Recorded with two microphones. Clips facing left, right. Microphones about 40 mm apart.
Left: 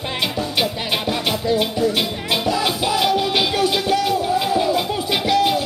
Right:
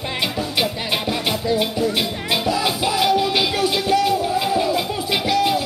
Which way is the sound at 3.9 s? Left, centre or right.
Centre.